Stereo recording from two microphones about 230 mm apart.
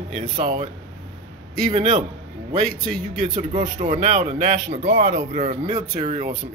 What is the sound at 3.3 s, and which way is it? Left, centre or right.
A man's voice, right.